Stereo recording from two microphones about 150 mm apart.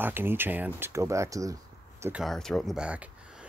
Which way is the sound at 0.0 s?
15° right (ahead or behind).